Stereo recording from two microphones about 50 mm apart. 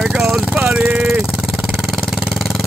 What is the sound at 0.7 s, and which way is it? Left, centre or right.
Vehicle, right.